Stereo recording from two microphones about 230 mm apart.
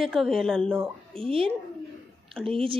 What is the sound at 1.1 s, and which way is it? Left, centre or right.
Speech, right.